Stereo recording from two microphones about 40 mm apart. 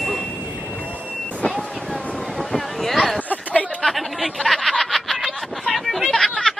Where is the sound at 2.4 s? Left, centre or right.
Centre.